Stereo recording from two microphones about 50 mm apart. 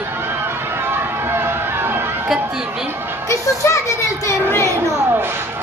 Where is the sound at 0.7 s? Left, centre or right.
Right.